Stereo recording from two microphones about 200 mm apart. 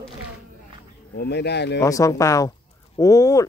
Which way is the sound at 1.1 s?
55° left (ahead or behind).